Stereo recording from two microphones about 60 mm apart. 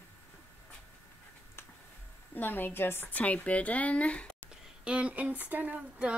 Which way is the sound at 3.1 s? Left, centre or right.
Left.